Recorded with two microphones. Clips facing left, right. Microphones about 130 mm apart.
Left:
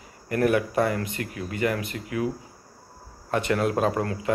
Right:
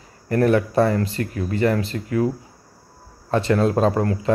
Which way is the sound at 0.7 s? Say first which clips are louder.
Right 6 dB; 30° right (ahead or behind).